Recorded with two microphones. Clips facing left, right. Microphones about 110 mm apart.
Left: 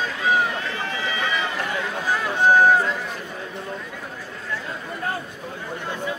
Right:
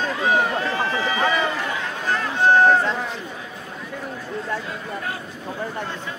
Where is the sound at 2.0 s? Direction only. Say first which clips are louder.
Even; 10° left (ahead or behind).